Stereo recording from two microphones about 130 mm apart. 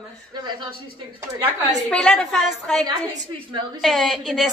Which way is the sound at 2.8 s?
30° right (ahead or behind).